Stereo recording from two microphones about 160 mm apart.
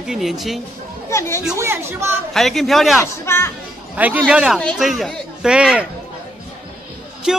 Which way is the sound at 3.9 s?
10° right (ahead or behind).